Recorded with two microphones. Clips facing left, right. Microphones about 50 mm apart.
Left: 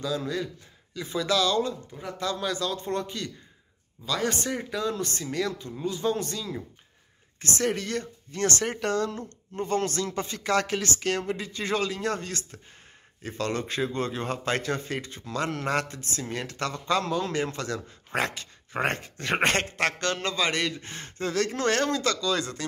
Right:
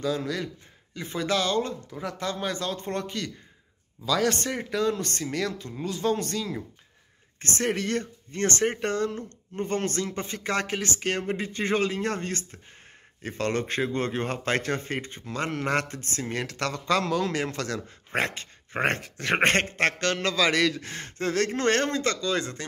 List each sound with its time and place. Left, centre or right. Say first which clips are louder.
0.0 s a man's voice: right 1 dB; right
4.4 s a man's voice: right 2 dB; right
7.3 s a man's voice: even; right
13.2 s a man's voice: right 2 dB; right
18.1 s dog: right 1 dB; right
18.9 s a man's voice: right 2 dB; right
19.3 s a man's voice: right 2 dB; right
20.0 s a man's voice: right 3 dB; right